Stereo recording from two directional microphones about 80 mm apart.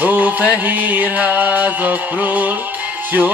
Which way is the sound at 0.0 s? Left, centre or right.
Centre.